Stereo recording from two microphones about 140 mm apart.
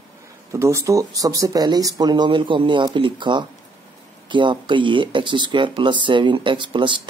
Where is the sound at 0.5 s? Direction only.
20° right (ahead or behind).